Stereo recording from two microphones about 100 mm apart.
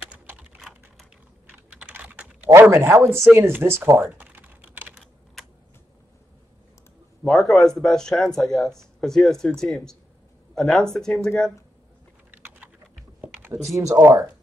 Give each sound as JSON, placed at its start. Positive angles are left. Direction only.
{"t": 0.6, "sound": "typing", "side_deg": 0}
{"t": 1.5, "sound": "typing", "side_deg": -15}
{"t": 2.5, "sound": "speech", "side_deg": -25}
{"t": 3.3, "sound": "typing", "side_deg": -25}
{"t": 4.9, "sound": "typing", "side_deg": 0}
{"t": 7.2, "sound": "speech", "side_deg": 5}
{"t": 13.2, "sound": "typing", "side_deg": -25}
{"t": 13.7, "sound": "speech", "side_deg": -30}